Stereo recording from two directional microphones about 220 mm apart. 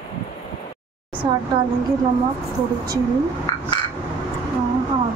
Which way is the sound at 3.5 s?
15° left (ahead or behind).